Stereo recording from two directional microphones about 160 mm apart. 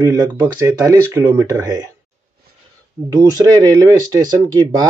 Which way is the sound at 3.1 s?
20° right (ahead or behind).